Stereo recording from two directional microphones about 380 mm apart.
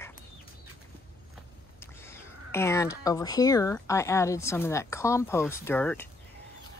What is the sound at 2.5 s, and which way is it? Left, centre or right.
Speech, centre.